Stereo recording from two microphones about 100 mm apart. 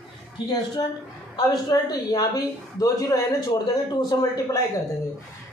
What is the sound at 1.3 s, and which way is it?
Speech, 40° left (ahead or behind).